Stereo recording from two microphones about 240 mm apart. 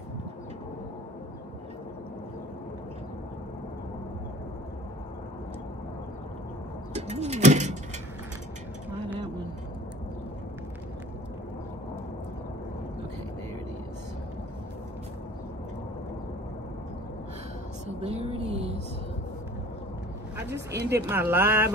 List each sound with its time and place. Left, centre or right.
6.9 s bird: right
18.0 s a sound: right
20.4 s speech: right
20.9 s speech: centre